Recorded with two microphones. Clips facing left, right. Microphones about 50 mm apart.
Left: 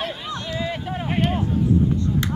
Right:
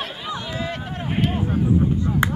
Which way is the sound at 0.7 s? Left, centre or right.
Centre.